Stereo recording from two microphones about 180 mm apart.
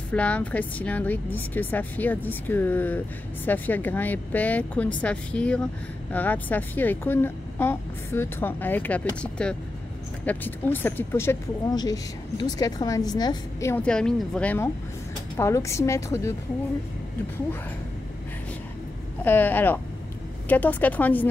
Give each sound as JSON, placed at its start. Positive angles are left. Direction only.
{"t": 0.1, "sound": "speech", "side_deg": 5}
{"t": 19.2, "sound": "speech", "side_deg": 10}